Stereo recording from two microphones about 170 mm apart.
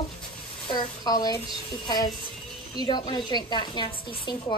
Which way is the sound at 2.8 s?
25° left (ahead or behind).